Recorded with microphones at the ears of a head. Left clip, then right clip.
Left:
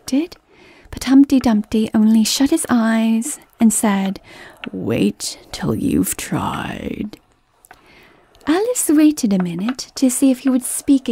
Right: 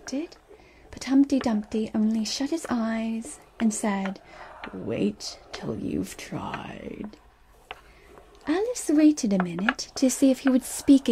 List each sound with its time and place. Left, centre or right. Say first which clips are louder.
0.0 s speech: left 12 dB; left
8.5 s speech: left 9 dB; left